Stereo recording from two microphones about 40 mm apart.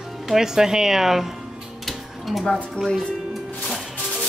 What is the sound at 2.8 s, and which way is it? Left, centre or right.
Speech, left.